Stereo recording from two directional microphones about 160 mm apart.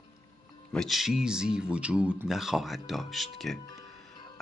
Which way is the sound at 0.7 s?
Centre (ahead or behind).